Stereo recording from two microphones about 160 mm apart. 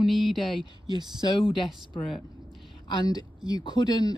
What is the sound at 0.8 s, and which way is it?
Speech, 25° right (ahead or behind).